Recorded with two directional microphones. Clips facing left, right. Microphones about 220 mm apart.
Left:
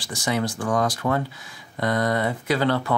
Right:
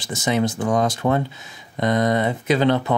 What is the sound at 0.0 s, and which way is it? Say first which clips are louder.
Speech: right 4 dB; 20° right (ahead or behind).